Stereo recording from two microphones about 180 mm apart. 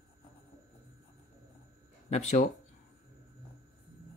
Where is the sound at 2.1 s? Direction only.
40° left (ahead or behind).